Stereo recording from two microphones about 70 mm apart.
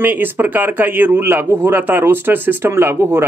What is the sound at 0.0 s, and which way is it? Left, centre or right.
A man's voice, right.